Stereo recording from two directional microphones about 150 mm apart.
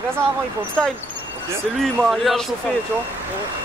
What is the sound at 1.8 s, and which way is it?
Speech, centre (ahead or behind).